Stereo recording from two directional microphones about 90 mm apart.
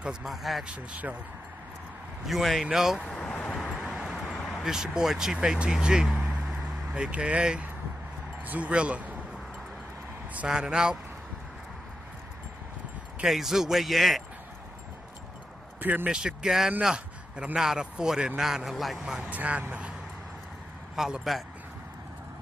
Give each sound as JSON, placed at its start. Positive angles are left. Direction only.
{"t": 0.0, "sound": "speech", "side_deg": -5}
{"t": 0.7, "sound": "a man's voice", "side_deg": -15}
{"t": 2.2, "sound": "speech", "side_deg": 0}
{"t": 3.1, "sound": "speech", "side_deg": 5}
{"t": 3.3, "sound": "vehicle", "side_deg": 15}
{"t": 3.8, "sound": "vehicle", "side_deg": -5}
{"t": 4.6, "sound": "a man's voice", "side_deg": -5}
{"t": 10.3, "sound": "a man's voice", "side_deg": -10}
{"t": 13.2, "sound": "speech", "side_deg": -5}
{"t": 15.8, "sound": "speech", "side_deg": -20}
{"t": 16.1, "sound": "a man's voice", "side_deg": -10}
{"t": 19.2, "sound": "a man's voice", "side_deg": -15}
{"t": 20.9, "sound": "speech", "side_deg": -5}